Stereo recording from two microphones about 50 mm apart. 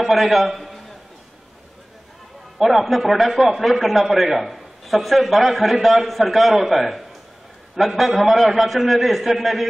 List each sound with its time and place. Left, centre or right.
0.0 s a man's voice: centre
2.6 s a man's voice: centre